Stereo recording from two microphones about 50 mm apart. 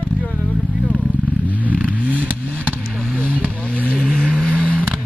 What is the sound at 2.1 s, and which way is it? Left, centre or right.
Vehicle, right.